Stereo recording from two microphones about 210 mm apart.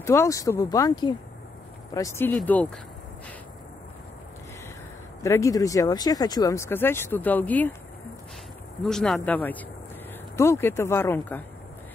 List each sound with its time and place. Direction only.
0.0 s speech: 15° left (ahead or behind)
5.2 s speech: 15° left (ahead or behind)
8.8 s speech: centre (ahead or behind)